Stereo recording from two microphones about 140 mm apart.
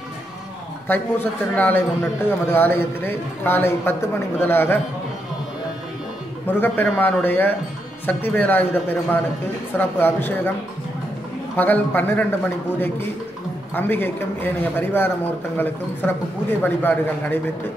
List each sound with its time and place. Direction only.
0.8 s speech: 15° left (ahead or behind)
6.4 s speech: 15° left (ahead or behind)
11.5 s speech: 15° left (ahead or behind)
13.7 s speech: 15° left (ahead or behind)